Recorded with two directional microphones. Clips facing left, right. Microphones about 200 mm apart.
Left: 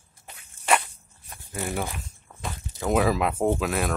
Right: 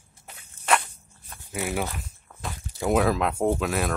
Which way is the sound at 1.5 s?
10° right (ahead or behind).